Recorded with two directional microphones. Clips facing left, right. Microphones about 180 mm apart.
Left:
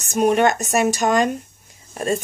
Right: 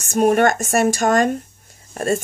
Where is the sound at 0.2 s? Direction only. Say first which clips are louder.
Right 1 dB; 50° right (ahead or behind).